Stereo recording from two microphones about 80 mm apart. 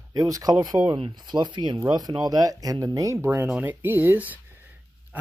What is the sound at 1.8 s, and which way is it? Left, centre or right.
Speech, right.